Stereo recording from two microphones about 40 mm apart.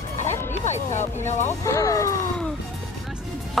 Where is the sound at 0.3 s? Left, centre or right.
Left.